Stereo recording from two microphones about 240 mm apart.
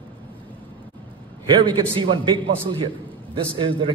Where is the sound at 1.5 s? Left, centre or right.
Right.